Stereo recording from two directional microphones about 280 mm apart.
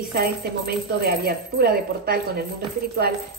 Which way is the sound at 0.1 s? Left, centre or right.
Right.